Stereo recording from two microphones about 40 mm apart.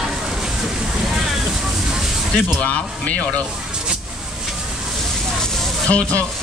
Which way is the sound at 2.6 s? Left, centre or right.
Left.